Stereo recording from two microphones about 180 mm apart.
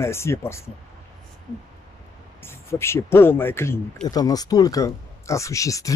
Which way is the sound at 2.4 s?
15° left (ahead or behind).